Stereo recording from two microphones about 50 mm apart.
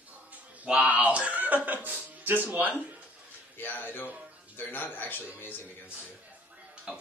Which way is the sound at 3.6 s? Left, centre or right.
Left.